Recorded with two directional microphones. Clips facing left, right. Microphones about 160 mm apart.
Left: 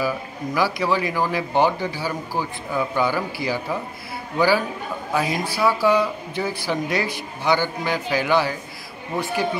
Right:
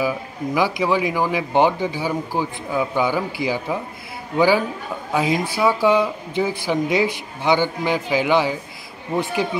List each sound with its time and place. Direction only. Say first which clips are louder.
0.6 s speech: right 2 dB; 20° right (ahead or behind)